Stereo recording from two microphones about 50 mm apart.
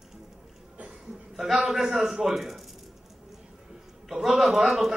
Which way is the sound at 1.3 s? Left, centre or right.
Centre.